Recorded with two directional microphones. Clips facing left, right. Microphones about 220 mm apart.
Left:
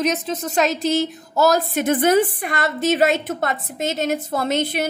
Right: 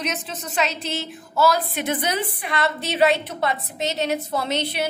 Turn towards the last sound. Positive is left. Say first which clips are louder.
# left 4 dB
turn(degrees=50)  # may be behind; listen again after turning